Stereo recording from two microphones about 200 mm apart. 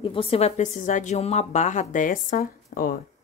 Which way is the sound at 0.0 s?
25° left (ahead or behind).